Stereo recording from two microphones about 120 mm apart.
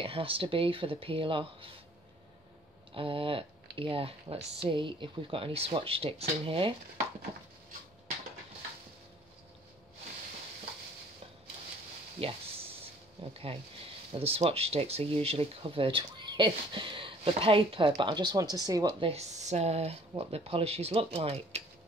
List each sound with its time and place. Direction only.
0.0 s speech: 50° right (ahead or behind)
2.9 s speech: 45° right (ahead or behind)
12.2 s speech: 50° right (ahead or behind); by 18.9 s 30° right (ahead or behind)
18.9 s speech: 50° right (ahead or behind)
19.4 s speech: 65° right (ahead or behind)